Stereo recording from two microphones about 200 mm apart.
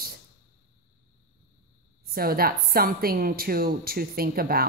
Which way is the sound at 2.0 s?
50° right (ahead or behind).